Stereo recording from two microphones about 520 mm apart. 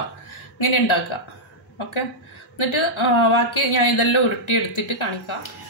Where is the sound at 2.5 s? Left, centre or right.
Left.